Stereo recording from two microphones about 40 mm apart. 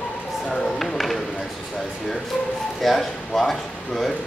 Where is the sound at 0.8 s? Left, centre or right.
Centre.